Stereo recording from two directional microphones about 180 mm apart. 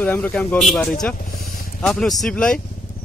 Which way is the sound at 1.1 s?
50° left (ahead or behind).